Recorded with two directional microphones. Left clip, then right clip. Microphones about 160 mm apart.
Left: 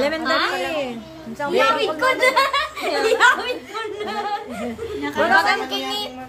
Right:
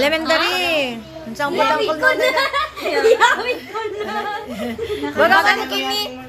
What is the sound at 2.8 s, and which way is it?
Speech, 15° left (ahead or behind).